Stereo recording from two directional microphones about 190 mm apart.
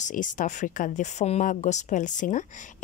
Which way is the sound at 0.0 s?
45° left (ahead or behind).